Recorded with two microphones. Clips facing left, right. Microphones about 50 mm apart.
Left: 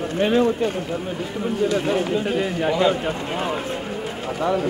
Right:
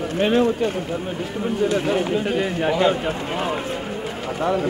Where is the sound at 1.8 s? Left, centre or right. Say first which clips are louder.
Even; centre.